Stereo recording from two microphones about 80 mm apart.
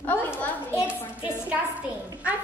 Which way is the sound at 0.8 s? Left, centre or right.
Centre.